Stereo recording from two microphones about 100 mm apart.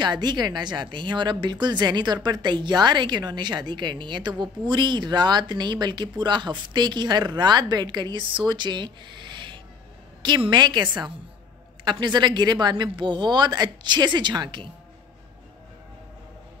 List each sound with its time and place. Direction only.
0.0 s a woman's voice: 45° right (ahead or behind)